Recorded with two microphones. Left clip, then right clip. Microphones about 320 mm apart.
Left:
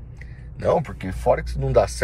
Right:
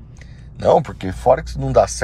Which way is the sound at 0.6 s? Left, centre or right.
Centre.